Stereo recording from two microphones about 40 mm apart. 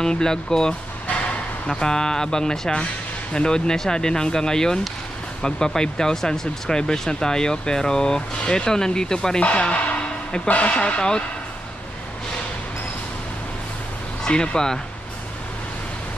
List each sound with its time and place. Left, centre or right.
0.0 s speech: centre
1.8 s speech: centre
5.8 s speech: centre
9.4 s a sound: left
10.5 s speech: left
14.2 s speech: left